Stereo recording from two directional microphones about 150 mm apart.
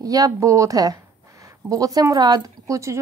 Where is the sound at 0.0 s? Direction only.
25° right (ahead or behind).